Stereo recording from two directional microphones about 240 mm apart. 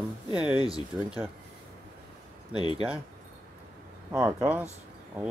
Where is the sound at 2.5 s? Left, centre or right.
Centre.